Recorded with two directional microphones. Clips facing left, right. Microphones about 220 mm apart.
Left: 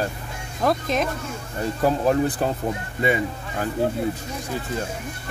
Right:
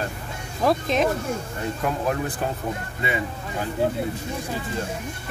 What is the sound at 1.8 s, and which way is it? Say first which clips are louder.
Speech: left 7 dB; 35° left (ahead or behind).